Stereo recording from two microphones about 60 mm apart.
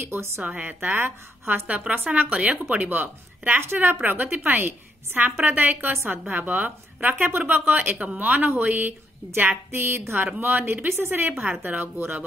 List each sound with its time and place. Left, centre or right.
0.0 s speech: right
0.4 s speech: right
1.7 s a woman's voice: right